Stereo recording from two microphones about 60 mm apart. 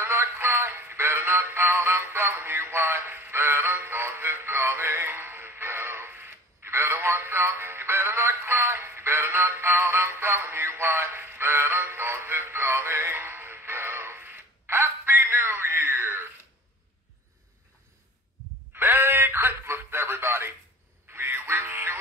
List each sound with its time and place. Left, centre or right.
0.0 s synthetic singing: right
18.8 s radio: right
21.1 s music: right